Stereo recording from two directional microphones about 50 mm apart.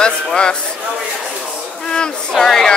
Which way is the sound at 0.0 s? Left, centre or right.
Centre.